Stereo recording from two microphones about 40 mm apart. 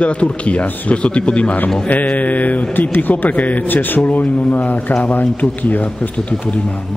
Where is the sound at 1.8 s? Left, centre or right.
Left.